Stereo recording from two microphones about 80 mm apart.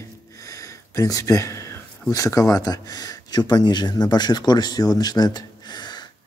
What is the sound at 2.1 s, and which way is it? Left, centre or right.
Speech, left.